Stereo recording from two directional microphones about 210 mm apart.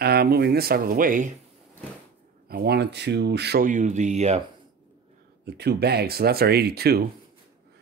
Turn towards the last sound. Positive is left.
turn(degrees=-50)  # may be behind; listen again after turning